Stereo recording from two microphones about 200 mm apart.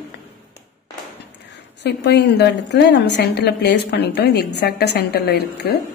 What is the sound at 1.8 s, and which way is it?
A woman's voice, 55° left (ahead or behind).